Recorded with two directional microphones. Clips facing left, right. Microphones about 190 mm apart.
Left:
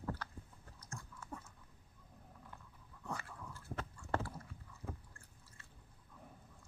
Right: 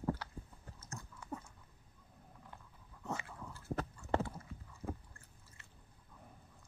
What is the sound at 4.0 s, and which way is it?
Clip-clop, 20° right (ahead or behind).